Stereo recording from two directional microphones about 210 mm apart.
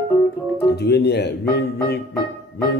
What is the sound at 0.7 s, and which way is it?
Music, 50° left (ahead or behind).